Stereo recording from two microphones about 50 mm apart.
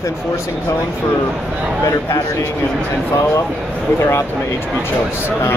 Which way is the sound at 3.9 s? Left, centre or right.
Left.